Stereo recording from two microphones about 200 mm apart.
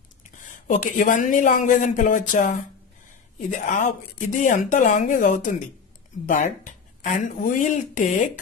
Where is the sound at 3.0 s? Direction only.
40° left (ahead or behind).